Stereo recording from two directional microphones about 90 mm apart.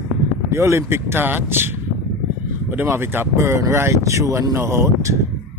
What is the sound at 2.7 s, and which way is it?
Speech, 25° right (ahead or behind).